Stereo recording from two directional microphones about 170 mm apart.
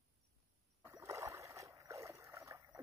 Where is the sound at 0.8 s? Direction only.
20° right (ahead or behind).